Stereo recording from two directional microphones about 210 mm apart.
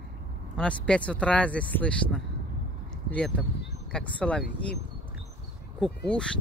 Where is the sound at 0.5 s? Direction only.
5° left (ahead or behind).